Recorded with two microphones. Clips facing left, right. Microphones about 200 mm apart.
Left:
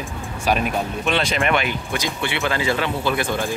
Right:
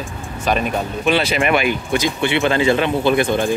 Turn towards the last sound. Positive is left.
turn(degrees=-20)  # may be behind; listen again after turning